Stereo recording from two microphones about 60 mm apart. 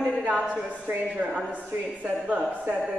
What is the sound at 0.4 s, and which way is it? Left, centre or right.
A woman's voice, centre.